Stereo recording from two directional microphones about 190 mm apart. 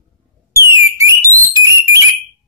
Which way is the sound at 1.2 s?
15° right (ahead or behind).